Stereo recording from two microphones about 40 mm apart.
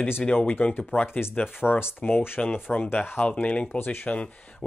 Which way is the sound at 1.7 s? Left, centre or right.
Left.